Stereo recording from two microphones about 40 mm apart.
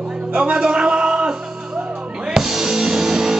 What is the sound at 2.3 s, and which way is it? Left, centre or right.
Music, centre.